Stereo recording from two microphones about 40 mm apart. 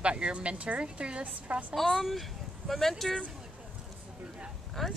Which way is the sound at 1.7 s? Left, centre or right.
Centre.